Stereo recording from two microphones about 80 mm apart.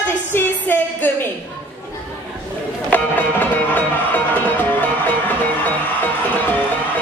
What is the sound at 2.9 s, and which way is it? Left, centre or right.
Music, left.